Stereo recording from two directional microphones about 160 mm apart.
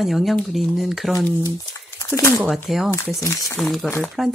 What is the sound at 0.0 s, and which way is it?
Speech, centre (ahead or behind).